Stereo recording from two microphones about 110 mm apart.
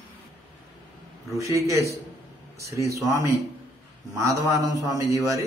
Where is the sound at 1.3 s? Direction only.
30° right (ahead or behind).